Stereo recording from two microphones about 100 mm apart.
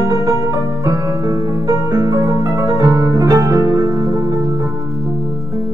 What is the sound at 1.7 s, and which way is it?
Music, 40° right (ahead or behind).